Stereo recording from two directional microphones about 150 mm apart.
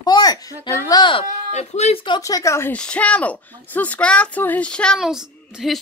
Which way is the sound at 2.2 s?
20° left (ahead or behind).